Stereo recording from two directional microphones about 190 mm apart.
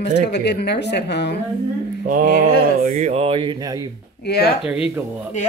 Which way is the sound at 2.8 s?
40° right (ahead or behind).